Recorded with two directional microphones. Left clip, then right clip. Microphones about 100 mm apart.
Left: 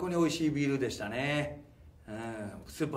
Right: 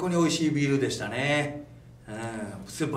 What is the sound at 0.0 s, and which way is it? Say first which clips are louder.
Speech: right 5 dB; 20° right (ahead or behind).